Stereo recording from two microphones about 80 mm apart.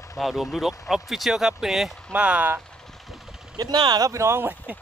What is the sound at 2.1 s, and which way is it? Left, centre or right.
Speech, centre.